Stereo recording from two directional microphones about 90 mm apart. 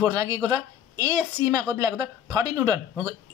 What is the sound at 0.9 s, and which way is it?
A woman's voice, 45° right (ahead or behind).